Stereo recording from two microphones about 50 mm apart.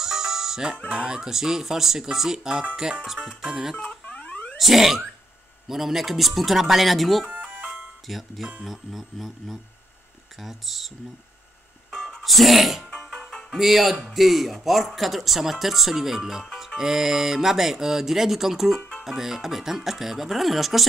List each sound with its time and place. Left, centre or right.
0.0 s music: centre
0.9 s speech: centre
4.0 s a sound: left
4.6 s speech: centre
11.9 s music: centre
12.2 s speech: centre
13.0 s music: centre
13.6 s speech: centre